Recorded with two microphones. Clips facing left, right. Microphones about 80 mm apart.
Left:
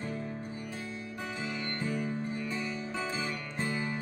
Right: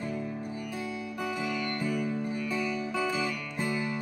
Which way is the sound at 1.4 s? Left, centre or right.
Left.